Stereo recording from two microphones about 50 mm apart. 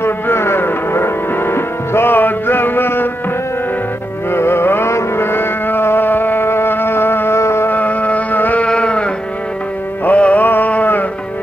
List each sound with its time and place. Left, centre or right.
0.0 s music: left
4.3 s music: left
4.9 s a sound: left
7.3 s music: left
7.7 s music: left
8.6 s sheep: left
10.0 s music: left